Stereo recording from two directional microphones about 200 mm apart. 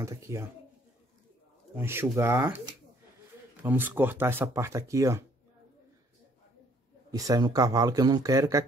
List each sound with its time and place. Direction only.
0.0 s speech: 15° right (ahead or behind)
1.8 s speech: 10° right (ahead or behind)
3.6 s speech: 10° right (ahead or behind)
7.1 s speech: 20° right (ahead or behind)